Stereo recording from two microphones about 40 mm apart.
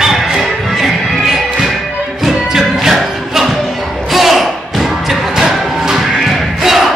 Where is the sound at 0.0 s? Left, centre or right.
Centre.